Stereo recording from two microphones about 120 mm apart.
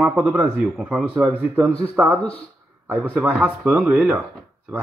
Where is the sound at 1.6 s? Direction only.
5° left (ahead or behind).